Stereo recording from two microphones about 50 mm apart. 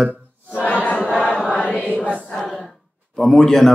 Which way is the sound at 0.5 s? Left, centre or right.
Left.